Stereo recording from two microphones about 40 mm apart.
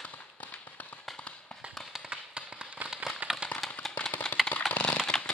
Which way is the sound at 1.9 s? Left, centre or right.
Centre.